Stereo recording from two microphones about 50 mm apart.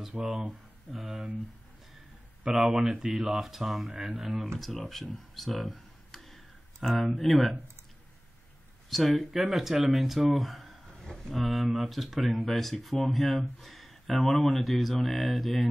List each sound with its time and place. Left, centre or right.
0.1 s speech: right
0.5 s speech: centre
2.4 s speech: centre
4.8 s a sound: centre
7.2 s speech: centre
8.9 s speech: centre